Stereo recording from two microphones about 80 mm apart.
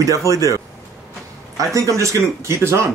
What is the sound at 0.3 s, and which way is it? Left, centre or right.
Speech, right.